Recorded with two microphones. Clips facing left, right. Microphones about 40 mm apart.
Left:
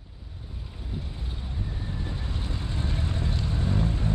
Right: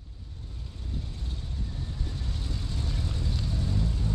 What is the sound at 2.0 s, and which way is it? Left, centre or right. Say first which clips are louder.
Vehicle: left 3 dB; left.